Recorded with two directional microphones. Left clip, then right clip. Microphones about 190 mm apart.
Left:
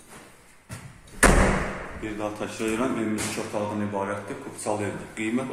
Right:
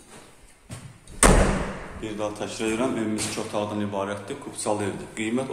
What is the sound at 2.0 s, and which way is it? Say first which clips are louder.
A man's voice: right 2 dB; 10° right (ahead or behind).